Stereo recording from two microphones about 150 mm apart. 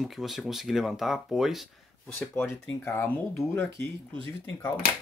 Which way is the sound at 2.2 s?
10° left (ahead or behind).